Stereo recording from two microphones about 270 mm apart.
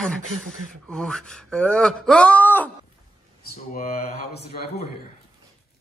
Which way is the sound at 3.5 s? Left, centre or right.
Left.